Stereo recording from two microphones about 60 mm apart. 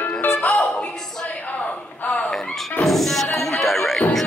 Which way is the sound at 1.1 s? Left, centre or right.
Centre.